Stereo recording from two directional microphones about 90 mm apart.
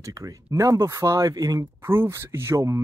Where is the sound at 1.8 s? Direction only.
25° right (ahead or behind).